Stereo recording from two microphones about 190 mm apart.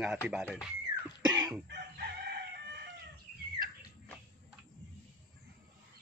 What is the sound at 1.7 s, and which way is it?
Chicken, 60° right (ahead or behind).